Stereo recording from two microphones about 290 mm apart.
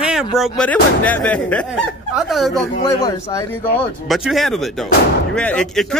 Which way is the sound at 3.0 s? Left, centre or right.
Centre.